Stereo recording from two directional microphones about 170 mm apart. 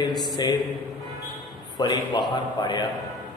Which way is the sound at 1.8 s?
25° left (ahead or behind).